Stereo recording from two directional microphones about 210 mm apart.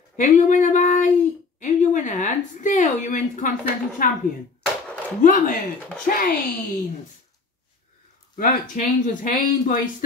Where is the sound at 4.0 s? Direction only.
40° left (ahead or behind).